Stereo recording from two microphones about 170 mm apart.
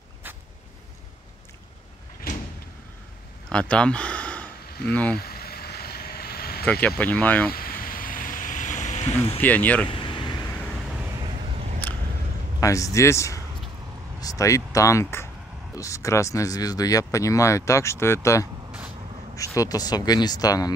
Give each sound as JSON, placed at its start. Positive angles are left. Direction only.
{"t": 3.4, "sound": "a sound", "side_deg": 5}
{"t": 5.1, "sound": "vehicle", "side_deg": 65}
{"t": 6.6, "sound": "speech", "side_deg": 10}
{"t": 7.5, "sound": "vehicle", "side_deg": 55}
{"t": 9.4, "sound": "speech", "side_deg": 10}
{"t": 9.8, "sound": "vehicle", "side_deg": 30}
{"t": 12.5, "sound": "speech", "side_deg": 20}